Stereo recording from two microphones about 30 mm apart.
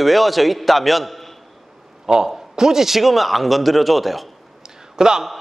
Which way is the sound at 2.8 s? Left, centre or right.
Centre.